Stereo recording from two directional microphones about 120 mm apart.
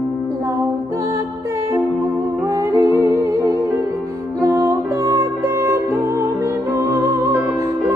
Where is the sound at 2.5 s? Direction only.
20° right (ahead or behind).